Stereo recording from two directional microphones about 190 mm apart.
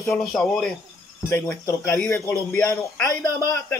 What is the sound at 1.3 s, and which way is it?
Speech, 15° left (ahead or behind).